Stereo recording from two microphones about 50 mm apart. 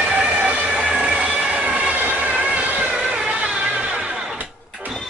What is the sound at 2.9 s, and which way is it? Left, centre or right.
Vehicle, centre.